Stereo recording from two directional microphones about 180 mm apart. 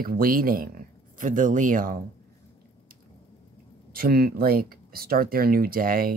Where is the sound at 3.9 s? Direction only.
55° right (ahead or behind).